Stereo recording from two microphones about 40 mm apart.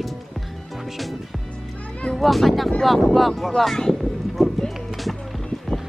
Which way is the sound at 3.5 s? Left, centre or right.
Centre.